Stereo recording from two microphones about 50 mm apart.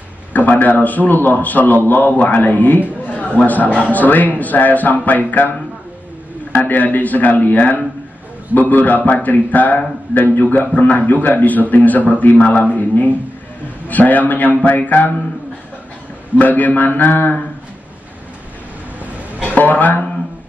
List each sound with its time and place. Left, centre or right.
0.3 s a man's voice: left
16.3 s a man's voice: left
19.5 s a man's voice: left